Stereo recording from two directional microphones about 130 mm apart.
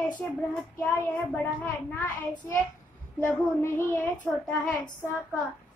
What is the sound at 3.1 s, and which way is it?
Speech, 20° left (ahead or behind).